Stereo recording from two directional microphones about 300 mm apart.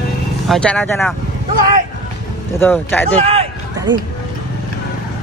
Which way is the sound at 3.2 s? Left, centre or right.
Centre.